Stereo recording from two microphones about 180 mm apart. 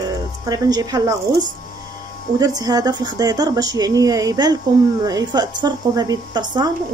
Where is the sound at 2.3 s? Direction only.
20° right (ahead or behind).